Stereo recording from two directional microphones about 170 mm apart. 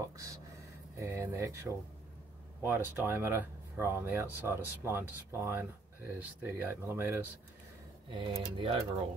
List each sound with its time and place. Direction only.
0.9 s speech: 15° right (ahead or behind)
8.1 s speech: 30° right (ahead or behind)